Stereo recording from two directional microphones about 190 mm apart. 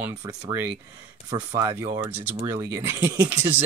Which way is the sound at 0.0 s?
15° right (ahead or behind).